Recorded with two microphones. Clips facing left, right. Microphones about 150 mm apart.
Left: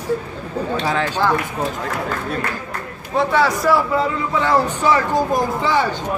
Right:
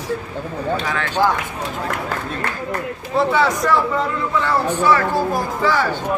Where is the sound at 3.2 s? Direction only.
Centre (ahead or behind); by 5.9 s 20° left (ahead or behind).